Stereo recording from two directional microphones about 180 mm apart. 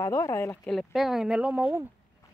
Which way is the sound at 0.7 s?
Centre (ahead or behind).